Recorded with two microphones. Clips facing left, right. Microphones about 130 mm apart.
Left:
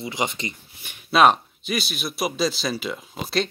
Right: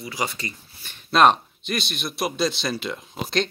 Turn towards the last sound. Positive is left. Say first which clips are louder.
# even
turn(degrees=0)  # may be behind; listen again after turning